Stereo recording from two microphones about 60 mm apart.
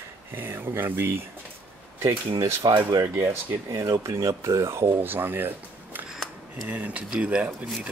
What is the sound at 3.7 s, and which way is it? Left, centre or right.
Speech, right.